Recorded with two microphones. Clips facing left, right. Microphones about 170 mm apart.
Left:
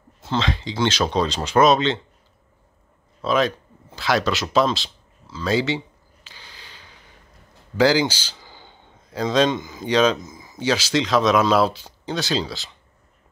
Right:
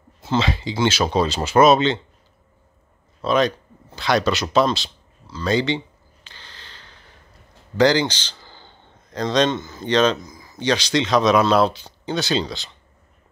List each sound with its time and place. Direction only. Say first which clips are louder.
0.2 s speech: right 2 dB; 5° right (ahead or behind)
3.2 s speech: right 1 dB; centre (ahead or behind)
6.2 s a sound: even; 10° left (ahead or behind)
9.6 s speech: even; 15° left (ahead or behind)
10.2 s speech: left 1 dB; 20° left (ahead or behind)
10.6 s speech: right 1 dB; 5° left (ahead or behind)